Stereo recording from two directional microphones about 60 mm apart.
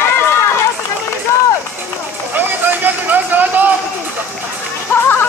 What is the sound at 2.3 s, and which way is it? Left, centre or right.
Vehicle, right.